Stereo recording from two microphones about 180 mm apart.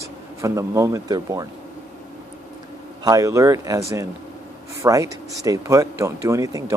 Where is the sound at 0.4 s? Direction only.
15° right (ahead or behind).